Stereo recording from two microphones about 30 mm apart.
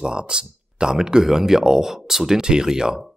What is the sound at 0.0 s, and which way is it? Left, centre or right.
Speech, right.